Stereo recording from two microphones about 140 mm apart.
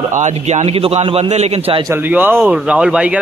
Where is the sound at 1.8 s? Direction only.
15° right (ahead or behind).